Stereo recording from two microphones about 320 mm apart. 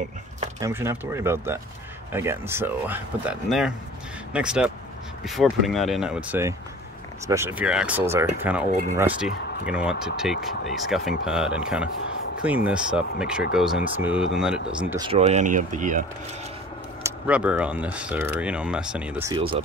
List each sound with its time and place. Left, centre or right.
0.6 s speech: centre
8.6 s speech: right
8.9 s speech: centre; by 16.1 s right
17.0 s speech: centre